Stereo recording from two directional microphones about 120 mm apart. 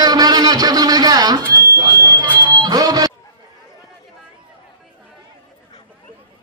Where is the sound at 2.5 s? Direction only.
35° right (ahead or behind).